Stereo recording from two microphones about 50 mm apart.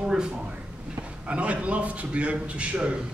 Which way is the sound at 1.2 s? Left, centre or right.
Right.